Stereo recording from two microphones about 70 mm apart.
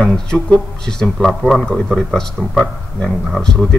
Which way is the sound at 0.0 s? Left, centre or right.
Centre.